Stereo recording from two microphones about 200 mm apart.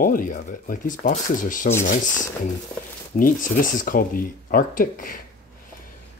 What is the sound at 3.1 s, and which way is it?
Speech, 45° left (ahead or behind).